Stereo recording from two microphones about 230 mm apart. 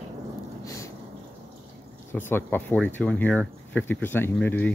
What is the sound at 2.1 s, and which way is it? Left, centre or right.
Speech, centre.